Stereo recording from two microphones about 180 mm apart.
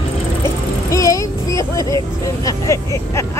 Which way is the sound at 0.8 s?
15° left (ahead or behind).